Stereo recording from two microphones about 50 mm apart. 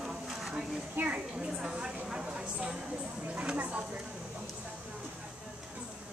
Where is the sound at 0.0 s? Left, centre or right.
Centre.